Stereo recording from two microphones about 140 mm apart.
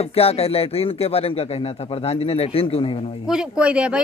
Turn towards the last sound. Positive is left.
turn(degrees=-10)  # may be behind; listen again after turning